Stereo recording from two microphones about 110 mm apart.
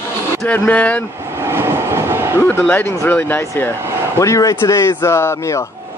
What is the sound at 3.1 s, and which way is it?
Speech, 15° left (ahead or behind).